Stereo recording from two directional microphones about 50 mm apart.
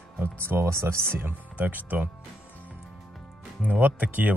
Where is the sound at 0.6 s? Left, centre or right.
Right.